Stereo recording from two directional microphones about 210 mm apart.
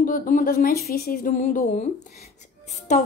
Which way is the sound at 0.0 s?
40° left (ahead or behind).